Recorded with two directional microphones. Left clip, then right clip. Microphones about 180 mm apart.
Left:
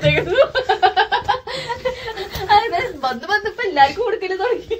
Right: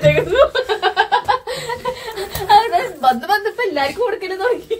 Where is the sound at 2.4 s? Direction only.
10° left (ahead or behind).